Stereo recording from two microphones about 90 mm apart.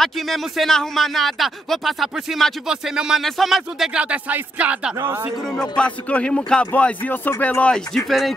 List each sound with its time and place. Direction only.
0.0 s speech: centre (ahead or behind)
4.0 s speech: 15° right (ahead or behind)
5.6 s speech: 15° left (ahead or behind)